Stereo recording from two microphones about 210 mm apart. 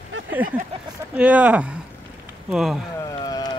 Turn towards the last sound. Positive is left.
turn(degrees=20)  # may be behind; listen again after turning